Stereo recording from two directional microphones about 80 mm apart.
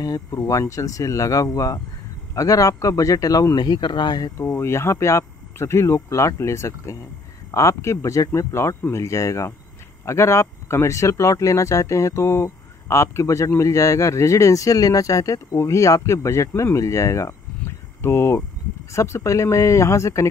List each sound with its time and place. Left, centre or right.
0.0 s speech: left
4.4 s speech: left